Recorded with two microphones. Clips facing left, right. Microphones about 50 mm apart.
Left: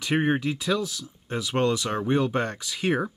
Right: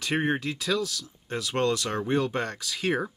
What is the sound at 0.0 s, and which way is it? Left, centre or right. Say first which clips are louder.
Speech: left 3 dB; centre.